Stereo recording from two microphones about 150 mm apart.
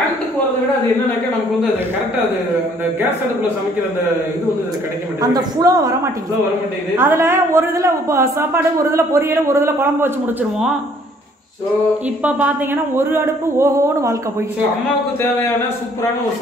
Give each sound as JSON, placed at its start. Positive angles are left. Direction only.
{"t": 5.2, "sound": "a woman's voice", "side_deg": -25}
{"t": 7.0, "sound": "a woman's voice", "side_deg": -15}
{"t": 12.2, "sound": "speech", "side_deg": -10}